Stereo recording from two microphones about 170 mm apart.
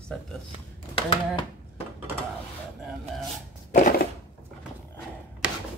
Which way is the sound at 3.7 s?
55° left (ahead or behind).